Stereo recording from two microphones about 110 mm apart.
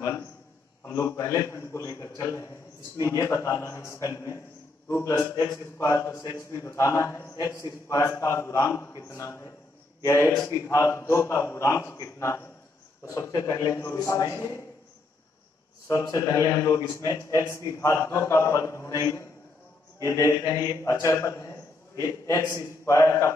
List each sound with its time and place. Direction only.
0.8 s a man's voice: 30° left (ahead or behind)
15.9 s a man's voice: 30° left (ahead or behind)